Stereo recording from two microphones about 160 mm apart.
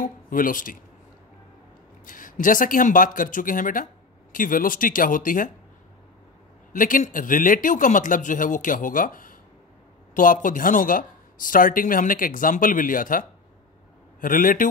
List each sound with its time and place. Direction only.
0.0 s speech: 60° left (ahead or behind)
2.0 s speech: 55° left (ahead or behind)
6.7 s speech: 55° left (ahead or behind)